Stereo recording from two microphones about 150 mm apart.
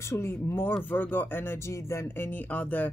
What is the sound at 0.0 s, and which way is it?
Speech, 15° left (ahead or behind).